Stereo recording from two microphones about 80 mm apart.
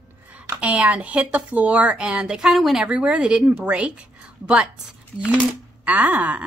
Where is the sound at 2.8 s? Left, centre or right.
Centre.